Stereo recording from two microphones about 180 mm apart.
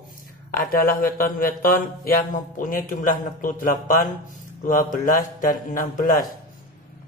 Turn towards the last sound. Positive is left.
turn(degrees=50)  # may be behind; listen again after turning